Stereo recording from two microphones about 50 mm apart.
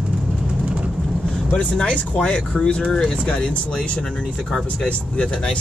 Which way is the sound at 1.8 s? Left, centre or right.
Left.